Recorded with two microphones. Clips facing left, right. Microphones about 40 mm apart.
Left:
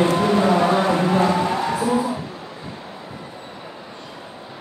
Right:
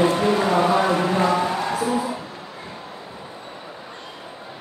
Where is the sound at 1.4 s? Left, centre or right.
Centre.